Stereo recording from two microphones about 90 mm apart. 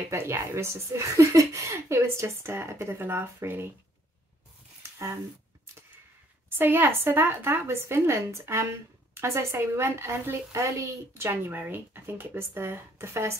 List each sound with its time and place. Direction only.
0.1 s speech: 30° right (ahead or behind)
4.9 s speech: 35° right (ahead or behind)
6.5 s speech: 25° right (ahead or behind)